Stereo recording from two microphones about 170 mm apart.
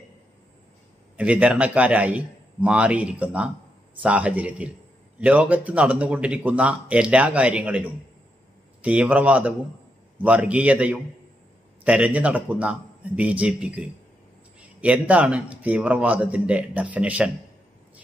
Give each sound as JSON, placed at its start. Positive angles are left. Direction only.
{"t": 1.1, "sound": "speech", "side_deg": -10}